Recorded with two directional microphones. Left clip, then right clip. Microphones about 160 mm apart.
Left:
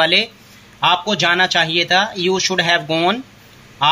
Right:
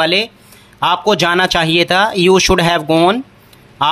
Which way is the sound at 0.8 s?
40° right (ahead or behind).